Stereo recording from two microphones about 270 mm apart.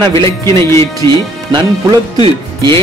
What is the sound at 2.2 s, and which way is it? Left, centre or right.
Speech, centre.